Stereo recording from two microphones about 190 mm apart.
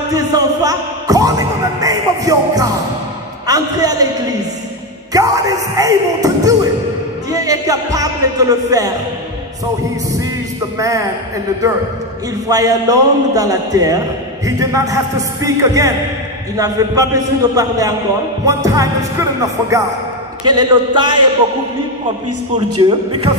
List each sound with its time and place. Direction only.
0.1 s music: 20° right (ahead or behind)
3.4 s a man's voice: 20° right (ahead or behind)
5.1 s speech: 20° right (ahead or behind)
10.8 s speech: 15° right (ahead or behind)
12.4 s a man's voice: 20° right (ahead or behind)
22.8 s a man's voice: 25° right (ahead or behind)